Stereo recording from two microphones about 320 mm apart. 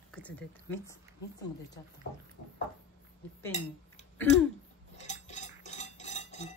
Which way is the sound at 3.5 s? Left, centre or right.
Left.